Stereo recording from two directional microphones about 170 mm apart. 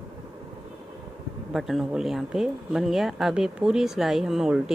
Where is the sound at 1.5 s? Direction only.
Centre (ahead or behind).